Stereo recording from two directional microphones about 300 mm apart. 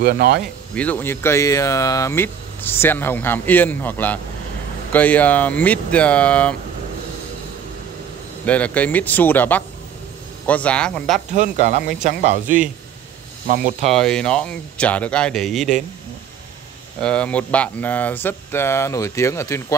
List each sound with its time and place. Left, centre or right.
0.0 s speech: right
0.7 s speech: centre
8.5 s speech: centre
11.3 s speech: right
13.9 s speech: centre
17.0 s speech: centre